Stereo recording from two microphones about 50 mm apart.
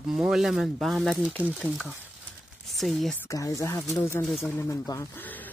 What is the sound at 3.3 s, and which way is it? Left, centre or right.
Speech, left.